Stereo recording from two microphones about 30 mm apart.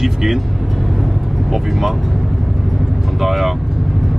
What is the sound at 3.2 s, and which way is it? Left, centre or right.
Speech, centre.